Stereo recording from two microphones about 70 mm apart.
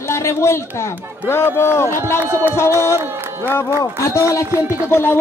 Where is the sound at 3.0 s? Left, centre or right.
Right.